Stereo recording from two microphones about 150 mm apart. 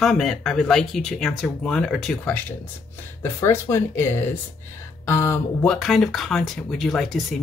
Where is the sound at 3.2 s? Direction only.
15° left (ahead or behind).